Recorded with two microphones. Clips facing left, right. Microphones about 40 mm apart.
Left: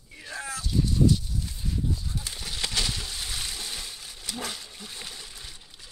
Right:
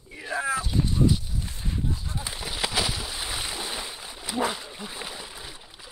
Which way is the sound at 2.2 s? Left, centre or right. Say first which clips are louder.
Right 3 dB; centre.